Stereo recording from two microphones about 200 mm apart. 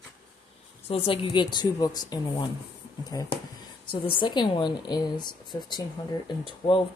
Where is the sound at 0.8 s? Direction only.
30° left (ahead or behind).